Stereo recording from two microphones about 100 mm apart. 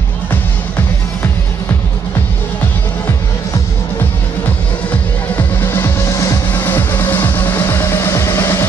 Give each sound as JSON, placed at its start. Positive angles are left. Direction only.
{"t": 5.3, "sound": "music", "side_deg": 20}
{"t": 6.5, "sound": "music", "side_deg": 20}